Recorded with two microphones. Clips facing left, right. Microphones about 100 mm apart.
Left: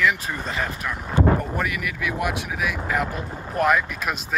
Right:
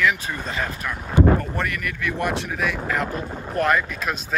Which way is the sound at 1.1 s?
15° right (ahead or behind).